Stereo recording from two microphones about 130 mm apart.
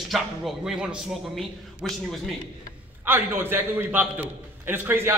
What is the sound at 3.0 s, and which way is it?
A man's voice, 15° right (ahead or behind).